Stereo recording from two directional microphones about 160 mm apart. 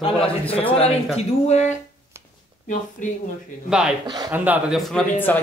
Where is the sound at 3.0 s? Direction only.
55° left (ahead or behind).